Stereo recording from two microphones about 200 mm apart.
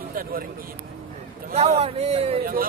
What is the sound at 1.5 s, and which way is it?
Speech, 30° right (ahead or behind).